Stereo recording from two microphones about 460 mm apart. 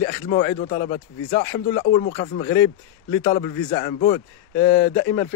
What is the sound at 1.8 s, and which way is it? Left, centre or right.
Speech, centre.